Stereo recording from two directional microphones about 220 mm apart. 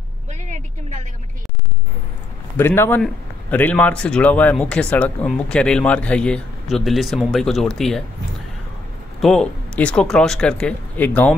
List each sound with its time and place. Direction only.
0.3 s vehicle: 35° right (ahead or behind)
2.5 s a man's voice: 10° left (ahead or behind)
9.2 s a man's voice: 5° left (ahead or behind)